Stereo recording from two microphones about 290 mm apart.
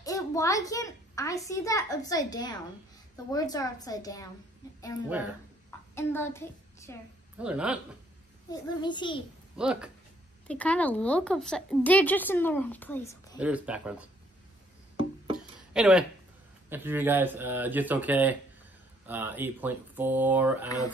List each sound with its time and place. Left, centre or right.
0.0 s a child's voice: centre
5.9 s a woman's voice: centre
7.3 s a woman's voice: centre
8.5 s a woman's voice: centre
9.6 s a woman's voice: centre
13.4 s a woman's voice: centre
15.7 s speech: centre
20.6 s a woman's voice: centre